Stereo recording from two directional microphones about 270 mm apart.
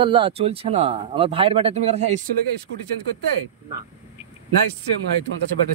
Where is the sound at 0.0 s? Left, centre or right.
Centre.